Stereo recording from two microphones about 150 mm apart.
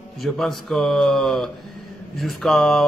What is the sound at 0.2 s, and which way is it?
Speech, centre (ahead or behind).